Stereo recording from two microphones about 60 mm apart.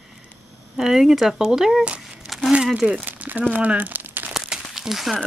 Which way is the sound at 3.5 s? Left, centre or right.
Right.